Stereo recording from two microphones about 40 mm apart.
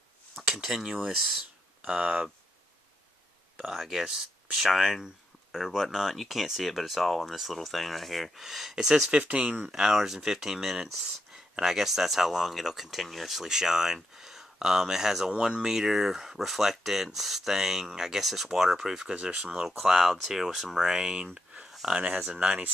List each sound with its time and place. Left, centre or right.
0.5 s speech: centre
1.8 s speech: right
3.6 s speech: centre
8.5 s speech: centre
9.1 s speech: right
9.7 s speech: centre
15.3 s speech: right
22.3 s speech: right